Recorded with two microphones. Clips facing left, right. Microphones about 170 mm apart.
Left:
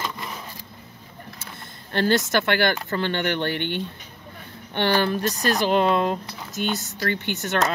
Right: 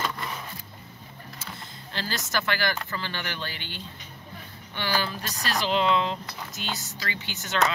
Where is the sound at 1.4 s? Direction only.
60° left (ahead or behind).